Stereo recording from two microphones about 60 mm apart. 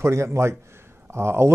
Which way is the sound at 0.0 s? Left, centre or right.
Right.